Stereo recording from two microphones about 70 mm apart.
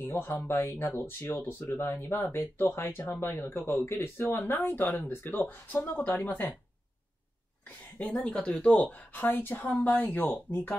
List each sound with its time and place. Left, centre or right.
0.0 s speech: left
8.0 s speech: left